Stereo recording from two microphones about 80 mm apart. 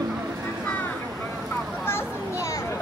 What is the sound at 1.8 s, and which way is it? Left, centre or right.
Children playing, left.